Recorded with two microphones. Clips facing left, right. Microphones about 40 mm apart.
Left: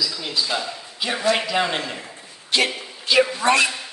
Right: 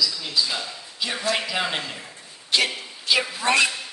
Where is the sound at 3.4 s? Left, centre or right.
Centre.